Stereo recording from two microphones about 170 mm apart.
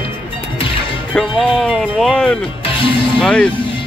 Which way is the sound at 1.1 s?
Centre (ahead or behind).